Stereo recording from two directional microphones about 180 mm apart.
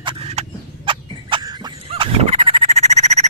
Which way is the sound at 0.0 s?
30° right (ahead or behind).